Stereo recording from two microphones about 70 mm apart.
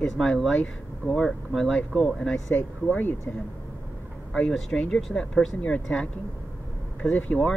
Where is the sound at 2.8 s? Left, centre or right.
Left.